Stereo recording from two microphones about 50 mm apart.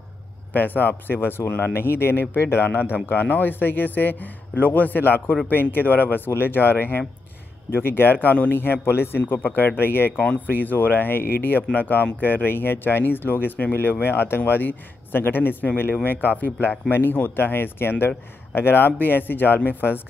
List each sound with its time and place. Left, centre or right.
0.5 s a man's voice: left